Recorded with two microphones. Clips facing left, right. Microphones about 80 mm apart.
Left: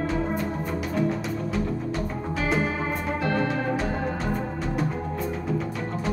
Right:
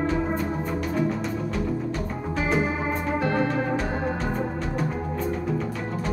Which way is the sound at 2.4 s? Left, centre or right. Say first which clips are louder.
Right 1 dB; centre.